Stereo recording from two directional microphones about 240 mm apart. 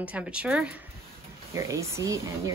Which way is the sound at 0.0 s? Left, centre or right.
Centre.